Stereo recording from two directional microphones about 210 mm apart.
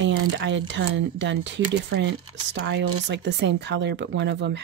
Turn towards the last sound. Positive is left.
turn(degrees=-55)  # may be behind; listen again after turning